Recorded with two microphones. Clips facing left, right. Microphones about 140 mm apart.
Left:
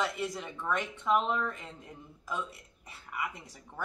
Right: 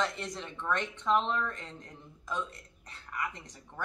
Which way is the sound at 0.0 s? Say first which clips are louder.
Left 1 dB; 5° left (ahead or behind).